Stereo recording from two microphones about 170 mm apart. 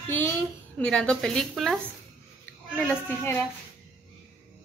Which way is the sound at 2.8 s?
10° left (ahead or behind).